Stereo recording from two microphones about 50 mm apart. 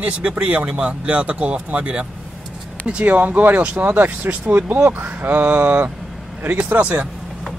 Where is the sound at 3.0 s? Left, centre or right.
Right.